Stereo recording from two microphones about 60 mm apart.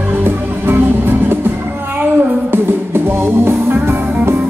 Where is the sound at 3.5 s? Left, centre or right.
Right.